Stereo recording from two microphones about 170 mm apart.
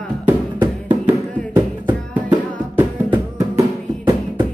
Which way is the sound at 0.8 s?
10° right (ahead or behind).